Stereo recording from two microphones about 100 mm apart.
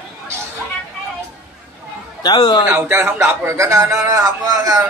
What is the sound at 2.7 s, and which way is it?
A man's voice, 30° right (ahead or behind).